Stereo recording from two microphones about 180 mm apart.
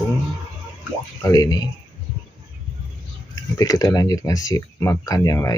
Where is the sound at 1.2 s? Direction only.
20° left (ahead or behind).